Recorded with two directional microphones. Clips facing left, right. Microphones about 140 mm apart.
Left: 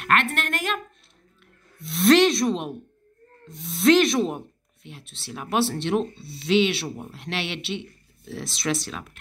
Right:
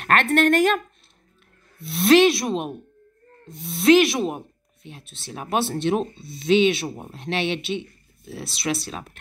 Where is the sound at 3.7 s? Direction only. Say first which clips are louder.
Right 2 dB; 20° right (ahead or behind).